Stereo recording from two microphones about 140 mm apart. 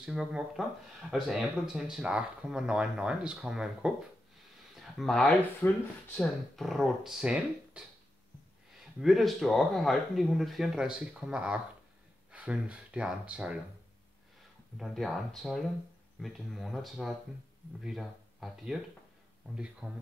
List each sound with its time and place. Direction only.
0.0 s speech: 5° right (ahead or behind)
5.6 s speech: 15° left (ahead or behind)
6.1 s speech: centre (ahead or behind)
9.0 s speech: centre (ahead or behind)
14.8 s speech: centre (ahead or behind)